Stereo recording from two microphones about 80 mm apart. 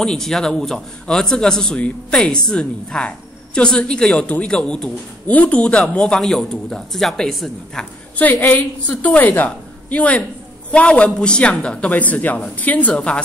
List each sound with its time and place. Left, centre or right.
0.0 s a man's voice: centre
8.2 s a woman's voice: left